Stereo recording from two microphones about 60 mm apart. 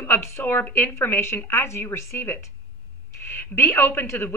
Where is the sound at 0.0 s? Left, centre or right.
Left.